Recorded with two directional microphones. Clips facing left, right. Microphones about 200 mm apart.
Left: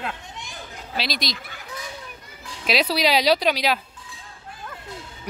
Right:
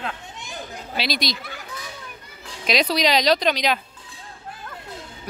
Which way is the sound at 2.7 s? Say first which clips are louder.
Right 1 dB; 5° left (ahead or behind).